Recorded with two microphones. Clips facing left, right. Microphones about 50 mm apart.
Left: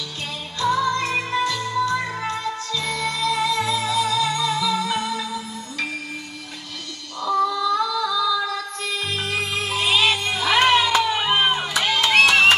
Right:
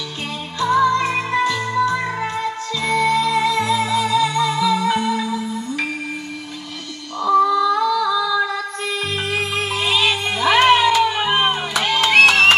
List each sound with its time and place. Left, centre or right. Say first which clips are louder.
0.6 s music: right 5 dB; right
7.2 s female singing: right 6 dB; right
9.7 s music: even; centre
10.2 s music: right 4 dB; right
11.2 s music: right 2 dB; centre
12.0 s music: right 4 dB; centre